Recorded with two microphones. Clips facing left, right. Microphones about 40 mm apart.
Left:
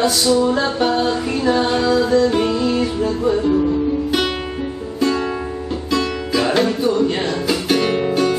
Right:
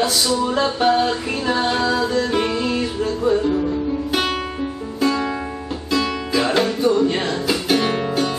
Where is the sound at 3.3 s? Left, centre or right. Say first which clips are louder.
Left 2 dB; centre.